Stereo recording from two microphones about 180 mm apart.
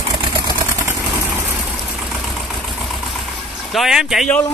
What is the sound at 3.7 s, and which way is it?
Speech, centre (ahead or behind).